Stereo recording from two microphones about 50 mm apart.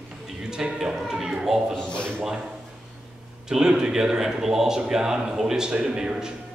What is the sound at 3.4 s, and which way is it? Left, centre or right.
A man's voice, centre.